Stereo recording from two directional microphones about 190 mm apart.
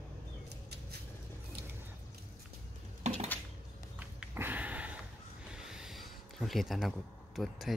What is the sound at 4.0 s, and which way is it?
Sniff, 10° right (ahead or behind).